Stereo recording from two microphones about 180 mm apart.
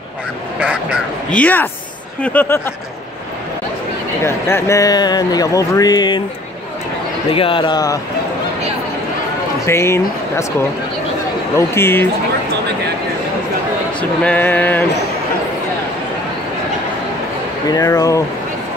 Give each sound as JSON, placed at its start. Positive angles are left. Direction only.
{"t": 0.6, "sound": "fowl", "side_deg": -5}
{"t": 1.3, "sound": "speech", "side_deg": 10}
{"t": 4.2, "sound": "speech", "side_deg": 15}
{"t": 7.2, "sound": "speech", "side_deg": 30}
{"t": 9.7, "sound": "speech", "side_deg": 15}
{"t": 11.5, "sound": "speech", "side_deg": 15}
{"t": 14.2, "sound": "speech", "side_deg": 10}
{"t": 17.6, "sound": "speech", "side_deg": 20}